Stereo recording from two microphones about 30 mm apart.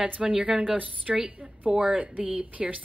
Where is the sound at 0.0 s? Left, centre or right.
Right.